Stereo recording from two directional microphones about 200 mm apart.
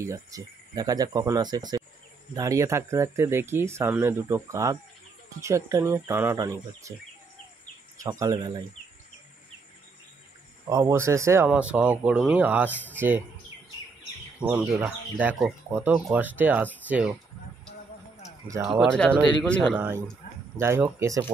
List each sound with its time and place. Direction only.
0.0 s speech: 15° right (ahead or behind)
8.0 s speech: 15° right (ahead or behind)
10.7 s speech: 15° right (ahead or behind)
14.4 s speech: 5° right (ahead or behind)
18.6 s speech: centre (ahead or behind)
19.7 s speech: 10° right (ahead or behind)